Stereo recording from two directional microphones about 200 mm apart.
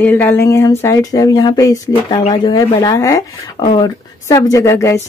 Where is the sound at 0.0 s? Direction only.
10° left (ahead or behind).